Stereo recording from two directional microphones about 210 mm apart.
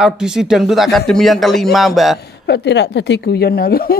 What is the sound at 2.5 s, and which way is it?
Speech, 55° left (ahead or behind).